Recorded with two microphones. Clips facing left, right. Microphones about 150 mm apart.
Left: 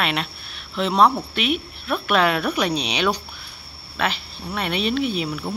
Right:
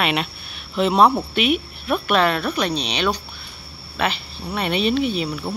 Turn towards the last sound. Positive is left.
turn(degrees=0)  # may be behind; listen again after turning